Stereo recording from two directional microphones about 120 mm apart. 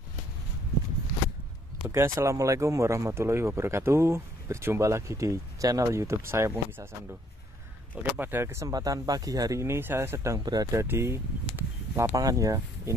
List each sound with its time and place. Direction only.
1.9 s speech: 25° right (ahead or behind)
8.0 s speech: 15° right (ahead or behind)
11.5 s a sound: 20° right (ahead or behind)
12.2 s speech: 30° right (ahead or behind)